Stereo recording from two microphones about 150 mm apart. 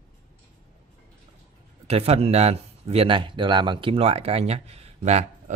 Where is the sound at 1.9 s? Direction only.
40° right (ahead or behind).